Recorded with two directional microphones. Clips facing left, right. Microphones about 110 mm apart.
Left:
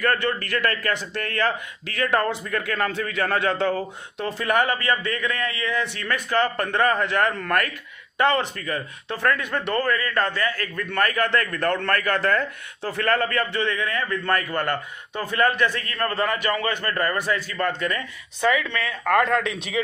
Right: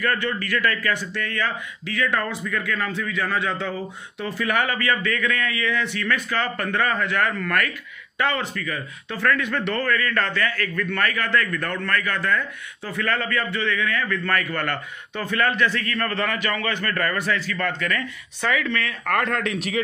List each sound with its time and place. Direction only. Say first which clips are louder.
0.0 s a man's voice: left 1 dB; 45° left (ahead or behind)
4.4 s a man's voice: left 1 dB; 35° left (ahead or behind)
9.9 s a man's voice: even; 30° left (ahead or behind)